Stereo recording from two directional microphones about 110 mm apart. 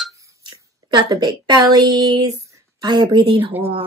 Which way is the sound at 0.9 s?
40° right (ahead or behind).